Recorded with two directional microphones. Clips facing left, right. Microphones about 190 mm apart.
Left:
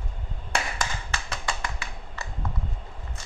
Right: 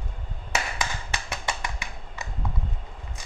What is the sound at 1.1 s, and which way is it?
Finger snapping, 20° right (ahead or behind).